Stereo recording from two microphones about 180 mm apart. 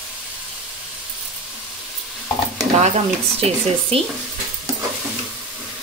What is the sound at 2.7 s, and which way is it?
Speech, 40° right (ahead or behind).